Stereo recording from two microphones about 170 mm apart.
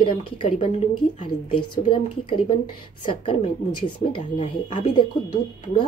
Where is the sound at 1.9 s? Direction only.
30° left (ahead or behind).